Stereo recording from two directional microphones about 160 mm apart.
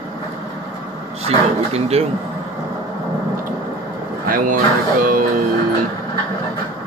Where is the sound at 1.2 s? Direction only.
40° right (ahead or behind).